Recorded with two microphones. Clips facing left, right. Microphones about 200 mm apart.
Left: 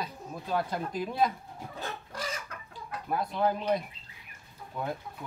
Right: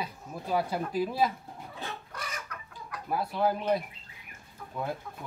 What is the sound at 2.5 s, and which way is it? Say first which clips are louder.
Chicken: even; 30° left (ahead or behind).